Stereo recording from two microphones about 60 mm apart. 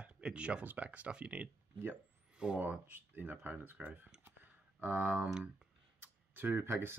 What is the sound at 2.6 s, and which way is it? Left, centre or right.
Speech, right.